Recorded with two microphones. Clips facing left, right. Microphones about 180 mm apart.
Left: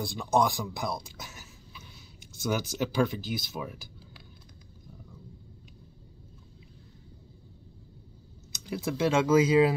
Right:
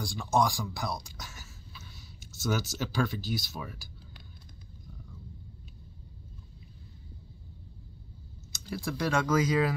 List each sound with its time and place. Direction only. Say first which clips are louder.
0.0 s speech: left 2 dB; 20° left (ahead or behind)
1.2 s a sound: left 1 dB; 20° left (ahead or behind)
2.7 s speech: left 4 dB; 15° left (ahead or behind)
8.5 s speech: left 3 dB; 20° left (ahead or behind)